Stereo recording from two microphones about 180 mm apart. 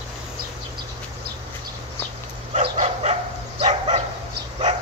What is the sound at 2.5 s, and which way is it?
Bow-wow, 35° right (ahead or behind).